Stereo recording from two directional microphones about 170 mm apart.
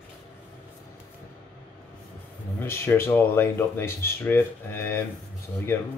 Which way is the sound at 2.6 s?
15° left (ahead or behind).